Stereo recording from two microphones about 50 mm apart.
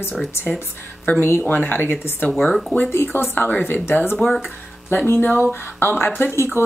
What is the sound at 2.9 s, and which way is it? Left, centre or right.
Speech, left.